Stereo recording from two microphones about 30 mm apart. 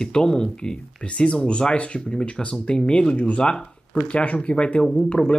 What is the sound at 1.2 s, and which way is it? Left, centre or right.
Speech, left.